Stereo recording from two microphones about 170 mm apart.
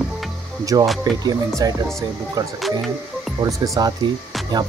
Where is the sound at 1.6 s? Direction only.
20° right (ahead or behind).